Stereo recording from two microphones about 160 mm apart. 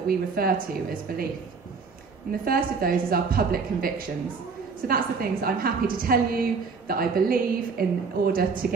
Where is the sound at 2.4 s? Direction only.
65° right (ahead or behind).